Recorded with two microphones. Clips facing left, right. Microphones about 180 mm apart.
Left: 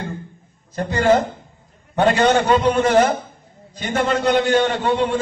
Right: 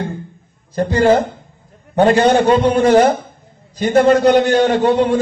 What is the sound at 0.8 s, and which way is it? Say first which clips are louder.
Speech: right 4 dB; 35° right (ahead or behind).